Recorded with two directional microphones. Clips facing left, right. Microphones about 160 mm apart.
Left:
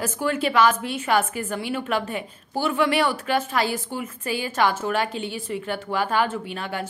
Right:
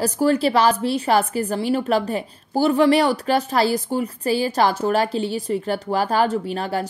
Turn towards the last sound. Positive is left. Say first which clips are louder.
# right 6 dB
turn(degrees=-35)  # may be behind; listen again after turning